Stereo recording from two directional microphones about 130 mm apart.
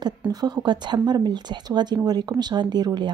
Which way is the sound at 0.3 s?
30° right (ahead or behind).